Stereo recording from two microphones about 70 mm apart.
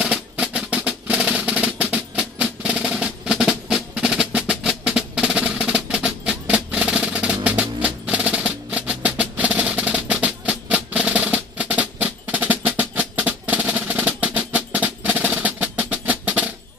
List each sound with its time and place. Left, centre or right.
0.0 s percussion: centre